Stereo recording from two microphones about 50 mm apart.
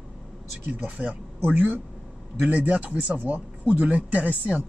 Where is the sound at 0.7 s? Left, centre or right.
Right.